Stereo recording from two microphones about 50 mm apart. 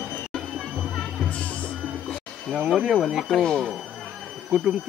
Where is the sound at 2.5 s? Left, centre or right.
Centre.